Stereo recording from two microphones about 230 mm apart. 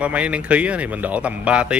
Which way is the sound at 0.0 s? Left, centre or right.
Centre.